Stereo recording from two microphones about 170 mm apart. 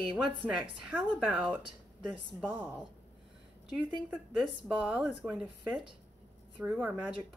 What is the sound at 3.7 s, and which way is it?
Speech, centre (ahead or behind).